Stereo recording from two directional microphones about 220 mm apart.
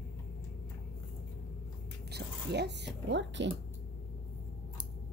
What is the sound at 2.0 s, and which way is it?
Speech, 50° right (ahead or behind).